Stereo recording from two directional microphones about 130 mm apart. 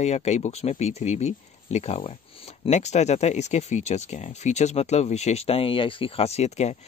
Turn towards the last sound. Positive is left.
turn(degrees=60)  # may be behind; listen again after turning